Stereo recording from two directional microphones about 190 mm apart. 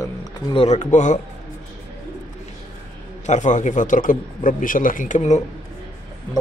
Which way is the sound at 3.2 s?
40° left (ahead or behind).